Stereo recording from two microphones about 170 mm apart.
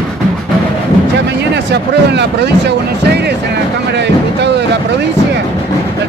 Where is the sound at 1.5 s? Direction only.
90° right.